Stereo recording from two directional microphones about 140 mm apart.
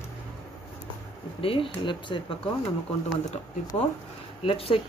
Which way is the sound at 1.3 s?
40° left (ahead or behind).